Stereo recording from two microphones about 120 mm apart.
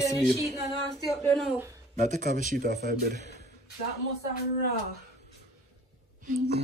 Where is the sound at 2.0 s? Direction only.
90° right.